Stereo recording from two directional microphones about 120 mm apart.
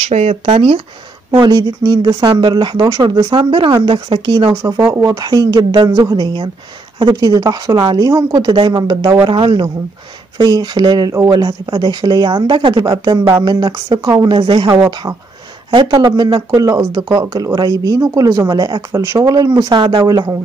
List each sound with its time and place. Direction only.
0.0 s speech: 60° right (ahead or behind)
1.4 s speech: 35° right (ahead or behind)
4.9 s speech: 30° right (ahead or behind)
15.7 s speech: 45° right (ahead or behind)
20.1 s speech: 30° right (ahead or behind)